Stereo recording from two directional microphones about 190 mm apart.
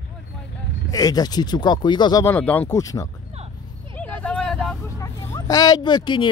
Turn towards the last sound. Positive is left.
turn(degrees=25)  # may be behind; listen again after turning